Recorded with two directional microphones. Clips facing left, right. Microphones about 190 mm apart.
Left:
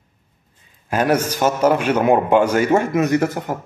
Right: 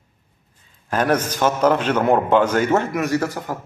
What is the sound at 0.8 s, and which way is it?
A man's voice, 10° left (ahead or behind).